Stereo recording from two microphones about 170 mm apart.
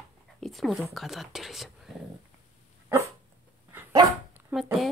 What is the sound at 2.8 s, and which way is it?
Dog, 15° right (ahead or behind).